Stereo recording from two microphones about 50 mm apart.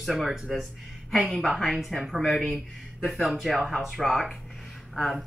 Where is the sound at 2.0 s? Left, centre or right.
Centre.